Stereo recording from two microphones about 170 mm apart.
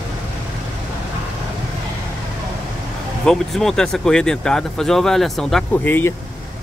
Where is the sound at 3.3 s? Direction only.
Centre (ahead or behind).